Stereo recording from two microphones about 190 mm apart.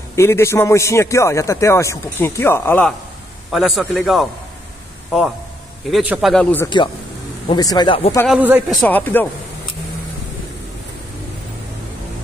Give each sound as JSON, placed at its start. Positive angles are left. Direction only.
{"t": 0.1, "sound": "a man's voice", "side_deg": 15}
{"t": 3.5, "sound": "a man's voice", "side_deg": 0}
{"t": 5.9, "sound": "a man's voice", "side_deg": -5}
{"t": 6.3, "sound": "a man's voice", "side_deg": 10}
{"t": 7.4, "sound": "speech", "side_deg": 20}
{"t": 8.3, "sound": "speech", "side_deg": -10}
{"t": 8.8, "sound": "a man's voice", "side_deg": 10}